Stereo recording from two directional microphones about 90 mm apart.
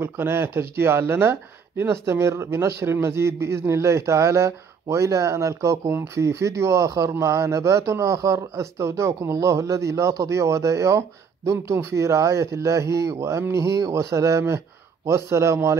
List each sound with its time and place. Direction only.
0.0 s speech: 25° right (ahead or behind)